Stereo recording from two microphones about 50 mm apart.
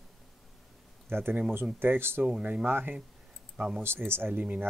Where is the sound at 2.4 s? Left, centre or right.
Right.